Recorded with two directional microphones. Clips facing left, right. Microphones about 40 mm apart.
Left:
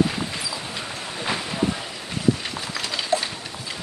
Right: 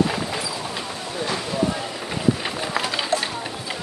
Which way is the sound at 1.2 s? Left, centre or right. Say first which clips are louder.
Right 1 dB; centre.